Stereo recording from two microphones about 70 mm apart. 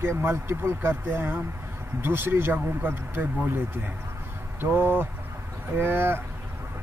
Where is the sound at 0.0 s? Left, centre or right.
Right.